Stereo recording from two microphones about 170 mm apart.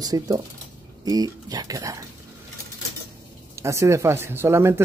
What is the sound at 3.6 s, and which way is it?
Speech, 15° right (ahead or behind).